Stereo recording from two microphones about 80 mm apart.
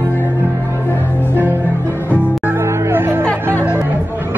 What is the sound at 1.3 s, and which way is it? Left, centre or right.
Music, right.